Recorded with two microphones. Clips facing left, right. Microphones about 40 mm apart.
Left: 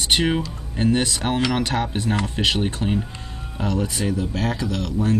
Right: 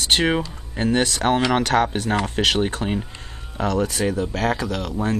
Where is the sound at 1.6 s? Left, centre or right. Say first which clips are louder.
Right 5 dB; right.